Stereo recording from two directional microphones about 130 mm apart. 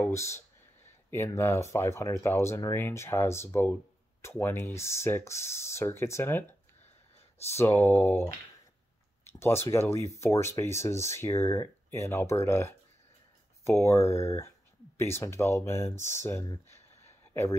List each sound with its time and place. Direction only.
0.0 s speech: 20° left (ahead or behind)
7.5 s speech: 20° left (ahead or behind)
17.3 s a sound: 20° left (ahead or behind)